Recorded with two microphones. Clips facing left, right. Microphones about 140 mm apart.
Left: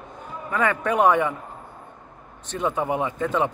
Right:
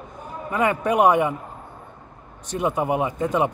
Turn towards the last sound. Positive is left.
turn(degrees=-15)  # may be behind; listen again after turning